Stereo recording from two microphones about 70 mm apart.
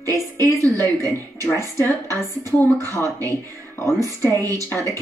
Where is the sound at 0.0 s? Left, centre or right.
Right.